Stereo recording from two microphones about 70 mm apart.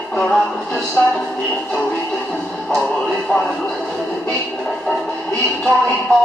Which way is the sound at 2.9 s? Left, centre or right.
Centre.